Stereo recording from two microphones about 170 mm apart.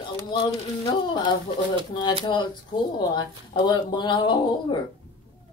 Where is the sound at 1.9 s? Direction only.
30° left (ahead or behind).